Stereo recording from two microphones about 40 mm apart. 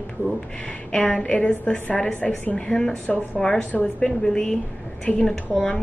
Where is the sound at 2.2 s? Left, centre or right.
Centre.